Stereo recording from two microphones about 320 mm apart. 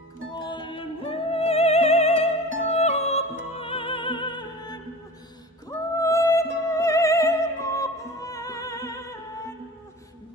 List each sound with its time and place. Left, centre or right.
0.4 s music: centre